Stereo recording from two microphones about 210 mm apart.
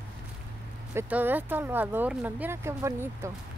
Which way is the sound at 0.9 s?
10° right (ahead or behind).